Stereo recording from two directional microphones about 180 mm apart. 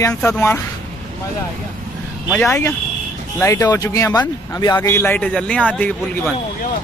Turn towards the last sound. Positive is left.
turn(degrees=5)  # may be behind; listen again after turning